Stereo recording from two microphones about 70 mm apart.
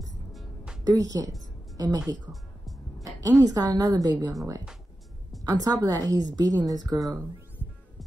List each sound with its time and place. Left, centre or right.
0.8 s a woman's voice: right
3.0 s music: right
3.4 s a woman's voice: right
5.4 s a woman's voice: right